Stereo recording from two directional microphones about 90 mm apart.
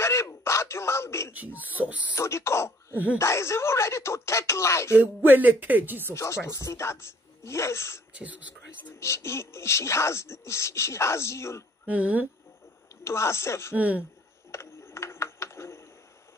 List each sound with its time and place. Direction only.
0.0 s groan: 30° left (ahead or behind)
1.3 s speech: 20° right (ahead or behind)
2.1 s speech: 30° left (ahead or behind)
2.9 s speech: 20° right (ahead or behind)
3.2 s speech: 30° left (ahead or behind)
5.2 s speech: 20° right (ahead or behind)
6.1 s speech: 30° left (ahead or behind)
8.1 s speech: 15° right (ahead or behind)
9.0 s speech: 30° left (ahead or behind)
11.9 s speech: 15° right (ahead or behind)
13.0 s speech: 30° left (ahead or behind)
13.7 s speech: 15° right (ahead or behind)
14.5 s a sound: 30° left (ahead or behind)